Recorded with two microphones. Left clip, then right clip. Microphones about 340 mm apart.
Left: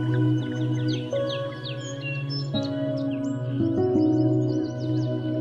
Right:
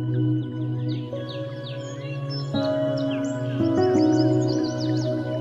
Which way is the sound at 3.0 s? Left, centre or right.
Centre.